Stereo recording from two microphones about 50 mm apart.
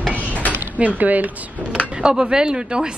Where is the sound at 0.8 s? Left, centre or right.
Right.